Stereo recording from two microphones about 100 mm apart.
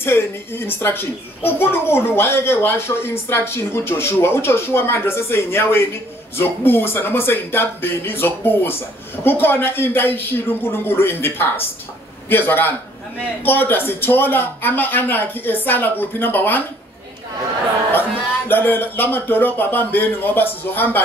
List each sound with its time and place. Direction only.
0.0 s a child's voice: 25° left (ahead or behind)
18.5 s a child's voice: 20° left (ahead or behind)